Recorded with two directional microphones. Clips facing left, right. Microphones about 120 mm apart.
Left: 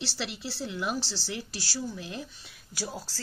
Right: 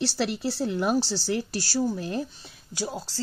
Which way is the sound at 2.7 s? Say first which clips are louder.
Right 5 dB; 20° right (ahead or behind).